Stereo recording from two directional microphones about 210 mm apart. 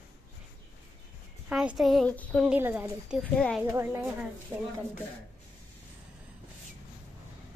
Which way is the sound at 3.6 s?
10° right (ahead or behind).